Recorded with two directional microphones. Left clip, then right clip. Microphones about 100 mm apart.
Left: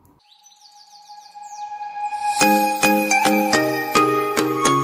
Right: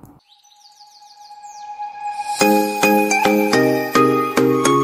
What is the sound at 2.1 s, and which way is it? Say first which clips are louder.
Music: left 2 dB; centre (ahead or behind).